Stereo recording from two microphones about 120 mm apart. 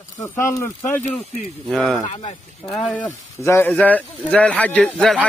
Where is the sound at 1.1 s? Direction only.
Centre (ahead or behind).